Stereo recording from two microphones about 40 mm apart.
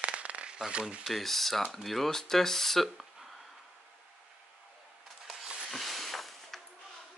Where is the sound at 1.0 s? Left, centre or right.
Centre.